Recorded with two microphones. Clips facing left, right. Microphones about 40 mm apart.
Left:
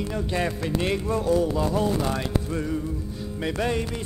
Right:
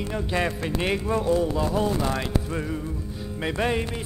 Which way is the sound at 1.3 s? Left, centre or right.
Centre.